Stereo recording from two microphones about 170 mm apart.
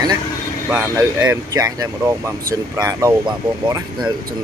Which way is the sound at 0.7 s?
10° right (ahead or behind).